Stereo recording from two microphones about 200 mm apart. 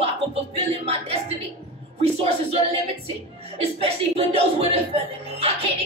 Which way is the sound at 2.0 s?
30° right (ahead or behind).